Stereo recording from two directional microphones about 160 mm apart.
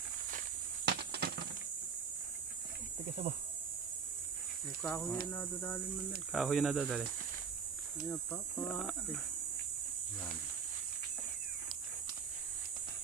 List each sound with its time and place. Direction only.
0.8 s a sound: 85° right
4.8 s speech: 15° left (ahead or behind)
6.3 s speech: centre (ahead or behind)
8.1 s speech: 5° left (ahead or behind)